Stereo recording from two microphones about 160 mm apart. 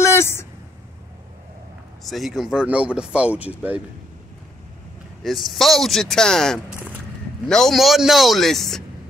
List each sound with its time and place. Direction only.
0.0 s a sound: 15° left (ahead or behind)
2.0 s speech: centre (ahead or behind)
5.2 s speech: centre (ahead or behind)